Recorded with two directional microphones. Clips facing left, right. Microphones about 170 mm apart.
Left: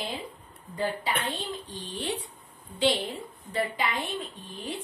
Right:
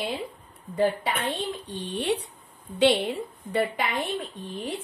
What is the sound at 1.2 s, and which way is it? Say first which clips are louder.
A woman's voice: right 4 dB; 65° right (ahead or behind).